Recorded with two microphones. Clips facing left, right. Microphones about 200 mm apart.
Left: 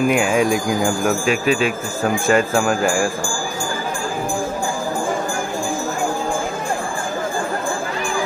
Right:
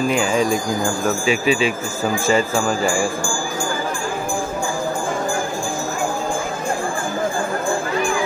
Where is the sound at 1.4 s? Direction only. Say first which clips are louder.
Even; 45° left (ahead or behind).